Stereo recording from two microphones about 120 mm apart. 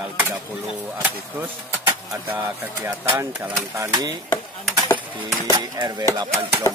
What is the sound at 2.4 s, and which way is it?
Speech, 20° right (ahead or behind).